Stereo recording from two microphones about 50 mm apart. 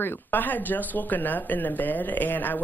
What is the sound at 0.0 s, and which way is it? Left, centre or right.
Speech, left.